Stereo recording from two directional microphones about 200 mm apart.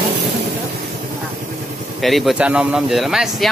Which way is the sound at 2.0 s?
Centre (ahead or behind).